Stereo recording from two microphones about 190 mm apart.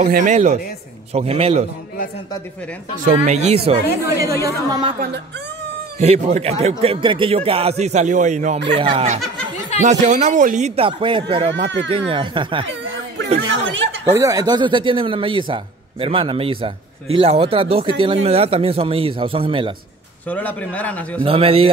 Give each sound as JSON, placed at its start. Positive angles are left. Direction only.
{"t": 0.0, "sound": "speech", "side_deg": -40}
{"t": 3.1, "sound": "speech", "side_deg": -35}
{"t": 4.0, "sound": "a woman's voice", "side_deg": -15}
{"t": 5.9, "sound": "speech", "side_deg": -35}
{"t": 8.7, "sound": "a man's voice", "side_deg": -30}
{"t": 10.9, "sound": "a man's voice", "side_deg": -25}
{"t": 13.5, "sound": "speech", "side_deg": -80}
{"t": 14.1, "sound": "a man's voice", "side_deg": -15}
{"t": 20.2, "sound": "a man's voice", "side_deg": 10}
{"t": 21.2, "sound": "a man's voice", "side_deg": -30}